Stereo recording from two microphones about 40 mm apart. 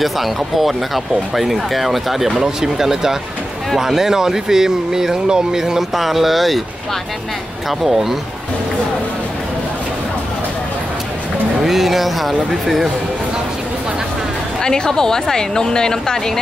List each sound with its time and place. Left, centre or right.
0.0 s speech: centre
7.8 s speech: centre
11.6 s speech: centre
14.6 s speech: centre